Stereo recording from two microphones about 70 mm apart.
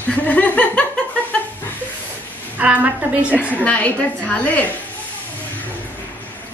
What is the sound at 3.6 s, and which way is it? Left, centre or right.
A woman's voice, left.